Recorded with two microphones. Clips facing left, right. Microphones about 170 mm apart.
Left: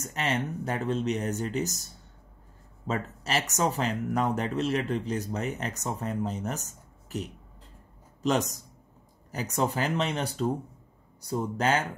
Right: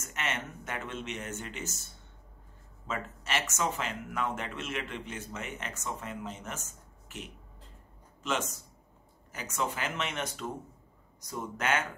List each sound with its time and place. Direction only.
0.0 s a man's voice: 35° left (ahead or behind)